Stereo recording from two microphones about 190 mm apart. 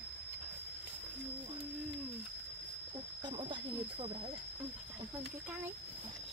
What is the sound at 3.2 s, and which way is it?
Snake, 25° right (ahead or behind).